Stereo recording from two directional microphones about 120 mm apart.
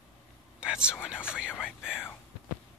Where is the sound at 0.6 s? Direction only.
5° right (ahead or behind).